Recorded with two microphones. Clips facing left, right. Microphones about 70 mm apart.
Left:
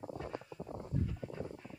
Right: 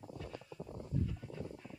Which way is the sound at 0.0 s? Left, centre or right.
Left.